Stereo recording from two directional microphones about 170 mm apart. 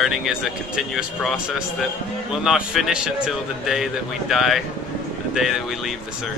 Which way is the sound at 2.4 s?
Centre (ahead or behind).